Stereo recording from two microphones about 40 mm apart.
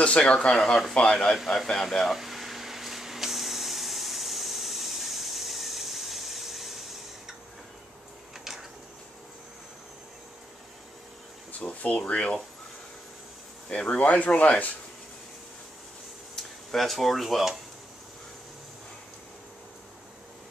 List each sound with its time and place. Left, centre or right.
0.0 s speech: left
0.5 s speech: centre
2.1 s spray: centre
11.6 s a sound: left
12.0 s speech: left
13.7 s speech: left
14.3 s speech: left
16.4 s a sound: centre
16.7 s speech: centre